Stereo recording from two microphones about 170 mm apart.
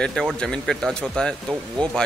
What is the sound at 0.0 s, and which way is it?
Speech, centre (ahead or behind).